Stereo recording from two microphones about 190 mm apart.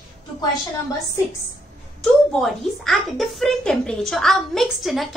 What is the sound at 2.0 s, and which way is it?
Speech, centre (ahead or behind).